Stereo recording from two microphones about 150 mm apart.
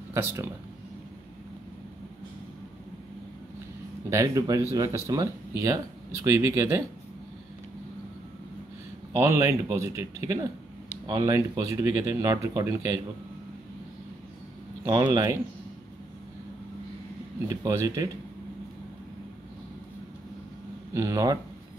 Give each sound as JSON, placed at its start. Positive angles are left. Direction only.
{"t": 0.1, "sound": "speech", "side_deg": -15}
{"t": 4.1, "sound": "speech", "side_deg": -20}
{"t": 9.1, "sound": "speech", "side_deg": -20}
{"t": 14.9, "sound": "speech", "side_deg": -25}
{"t": 17.5, "sound": "speech", "side_deg": -20}
{"t": 20.9, "sound": "speech", "side_deg": -20}